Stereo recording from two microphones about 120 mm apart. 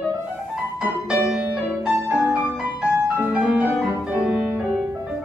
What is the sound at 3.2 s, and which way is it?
Music, 15° right (ahead or behind).